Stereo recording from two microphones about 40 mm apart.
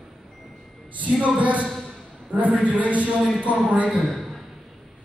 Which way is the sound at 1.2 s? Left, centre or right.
Right.